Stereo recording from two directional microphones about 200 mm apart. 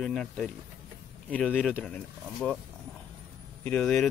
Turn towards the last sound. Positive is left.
turn(degrees=5)  # may be behind; listen again after turning